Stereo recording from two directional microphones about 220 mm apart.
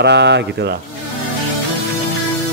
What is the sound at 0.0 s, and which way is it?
Speech, 50° right (ahead or behind).